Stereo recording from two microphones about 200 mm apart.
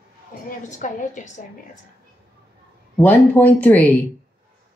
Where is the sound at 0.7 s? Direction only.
40° left (ahead or behind).